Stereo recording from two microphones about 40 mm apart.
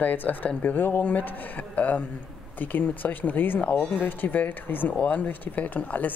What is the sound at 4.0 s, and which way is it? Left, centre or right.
Speech, left.